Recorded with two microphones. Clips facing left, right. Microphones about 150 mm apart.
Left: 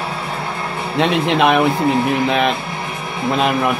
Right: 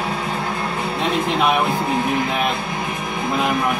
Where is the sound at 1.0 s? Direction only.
85° left.